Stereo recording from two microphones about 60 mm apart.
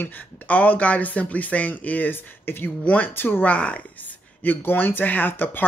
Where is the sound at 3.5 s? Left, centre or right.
Left.